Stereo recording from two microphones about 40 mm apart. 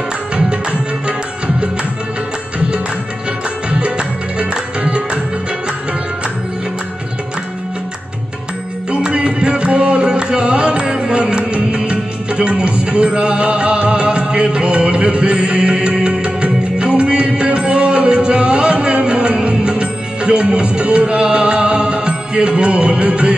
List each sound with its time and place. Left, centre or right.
0.5 s music: right
4.4 s music: right
9.0 s music: right